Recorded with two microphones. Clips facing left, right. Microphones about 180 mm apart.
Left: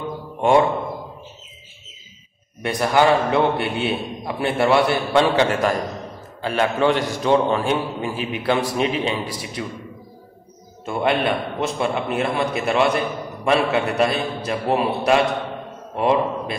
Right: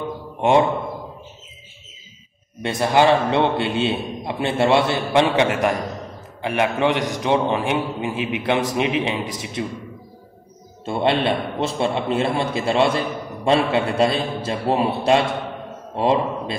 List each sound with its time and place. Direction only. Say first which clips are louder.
2.6 s a man's voice: right 1 dB; 25° right (ahead or behind)
10.9 s a man's voice: right 1 dB; 30° right (ahead or behind)